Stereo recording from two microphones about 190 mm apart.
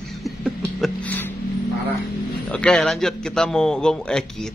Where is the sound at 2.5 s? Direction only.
5° left (ahead or behind).